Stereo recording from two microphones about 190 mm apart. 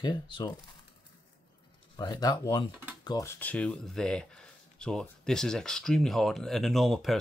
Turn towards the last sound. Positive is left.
turn(degrees=0)  # may be behind; listen again after turning